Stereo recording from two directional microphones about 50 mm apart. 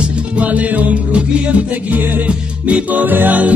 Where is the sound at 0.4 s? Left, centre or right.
Right.